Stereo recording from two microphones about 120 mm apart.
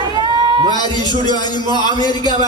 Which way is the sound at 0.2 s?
35° right (ahead or behind).